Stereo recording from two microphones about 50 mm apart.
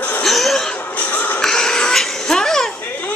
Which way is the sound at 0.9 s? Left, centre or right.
Left.